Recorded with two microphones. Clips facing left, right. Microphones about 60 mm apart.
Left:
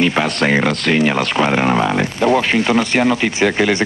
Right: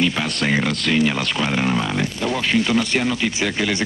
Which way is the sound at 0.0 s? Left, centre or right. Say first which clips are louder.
Left 5 dB; left.